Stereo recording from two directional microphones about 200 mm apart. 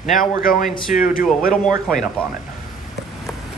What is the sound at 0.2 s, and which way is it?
A man's voice, 45° left (ahead or behind).